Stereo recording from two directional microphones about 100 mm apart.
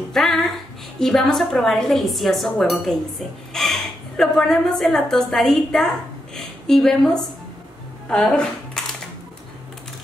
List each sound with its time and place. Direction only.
0.1 s a woman's voice: centre (ahead or behind)